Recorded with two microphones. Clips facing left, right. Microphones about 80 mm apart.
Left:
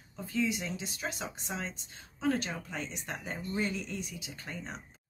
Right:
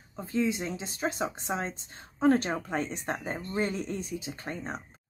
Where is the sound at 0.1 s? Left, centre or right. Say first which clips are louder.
Right 3 dB; right.